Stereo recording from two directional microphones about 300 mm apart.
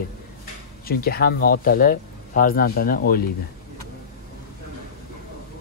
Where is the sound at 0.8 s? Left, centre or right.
Left.